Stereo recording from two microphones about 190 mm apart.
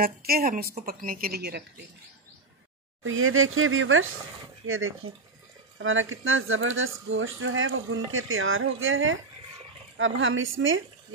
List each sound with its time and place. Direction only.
0.0 s a woman's voice: 50° right (ahead or behind)
3.0 s speech: 90° right